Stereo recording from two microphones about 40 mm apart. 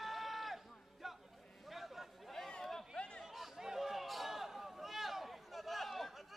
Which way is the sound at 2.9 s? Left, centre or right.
Left.